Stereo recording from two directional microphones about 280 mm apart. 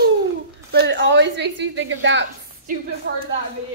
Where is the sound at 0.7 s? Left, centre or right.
Right.